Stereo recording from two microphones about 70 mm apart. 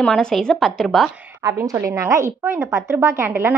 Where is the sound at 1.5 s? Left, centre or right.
Right.